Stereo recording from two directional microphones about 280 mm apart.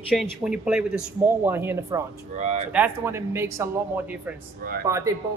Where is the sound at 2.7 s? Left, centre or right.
Centre.